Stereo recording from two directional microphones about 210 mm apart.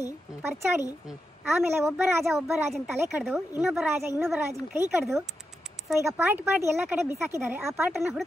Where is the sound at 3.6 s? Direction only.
5° right (ahead or behind).